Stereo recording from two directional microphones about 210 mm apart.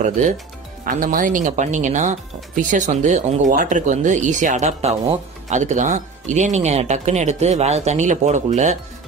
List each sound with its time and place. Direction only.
0.8 s speech: 40° right (ahead or behind)